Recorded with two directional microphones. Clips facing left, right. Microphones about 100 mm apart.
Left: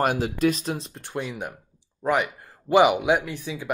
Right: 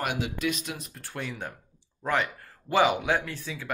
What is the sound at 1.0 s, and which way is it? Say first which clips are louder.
Speech: left 5 dB; 20° left (ahead or behind).